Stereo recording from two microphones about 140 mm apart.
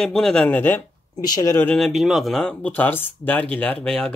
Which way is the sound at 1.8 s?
Centre (ahead or behind).